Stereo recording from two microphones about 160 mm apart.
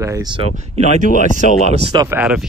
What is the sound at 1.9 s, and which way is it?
Speech, 15° right (ahead or behind).